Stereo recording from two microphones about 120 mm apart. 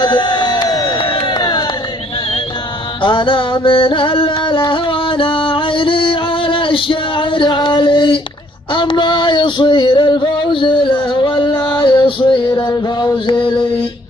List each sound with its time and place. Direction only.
0.0 s crowd: 35° left (ahead or behind)
3.0 s music: 45° left (ahead or behind)
8.7 s a sound: 40° left (ahead or behind)
11.7 s music: 40° left (ahead or behind)